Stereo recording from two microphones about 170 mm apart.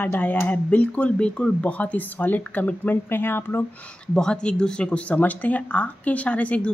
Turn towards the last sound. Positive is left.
turn(degrees=10)  # may be behind; listen again after turning